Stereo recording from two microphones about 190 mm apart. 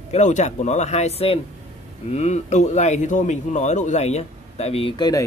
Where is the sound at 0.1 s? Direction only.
40° left (ahead or behind).